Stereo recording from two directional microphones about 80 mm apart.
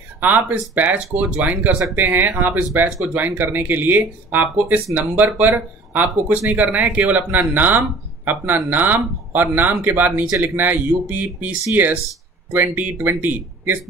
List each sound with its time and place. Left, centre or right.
0.2 s speech: right